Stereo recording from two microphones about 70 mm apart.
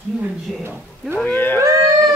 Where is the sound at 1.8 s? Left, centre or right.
Centre.